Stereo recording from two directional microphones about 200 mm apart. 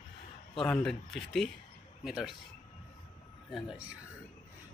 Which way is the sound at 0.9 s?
Centre (ahead or behind).